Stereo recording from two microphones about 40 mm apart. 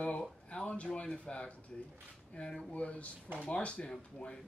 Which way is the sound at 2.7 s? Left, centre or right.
Left.